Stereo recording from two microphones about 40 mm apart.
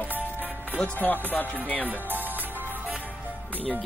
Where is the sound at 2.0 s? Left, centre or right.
Right.